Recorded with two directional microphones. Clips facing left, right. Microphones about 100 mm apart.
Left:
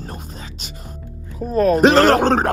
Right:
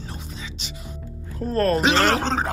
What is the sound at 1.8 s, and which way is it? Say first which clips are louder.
Speech: left 8 dB; 40° left (ahead or behind).